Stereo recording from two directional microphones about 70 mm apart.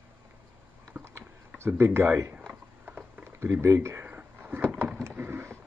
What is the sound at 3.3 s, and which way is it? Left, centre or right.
Speech, right.